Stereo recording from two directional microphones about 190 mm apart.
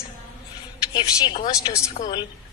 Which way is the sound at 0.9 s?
20° left (ahead or behind).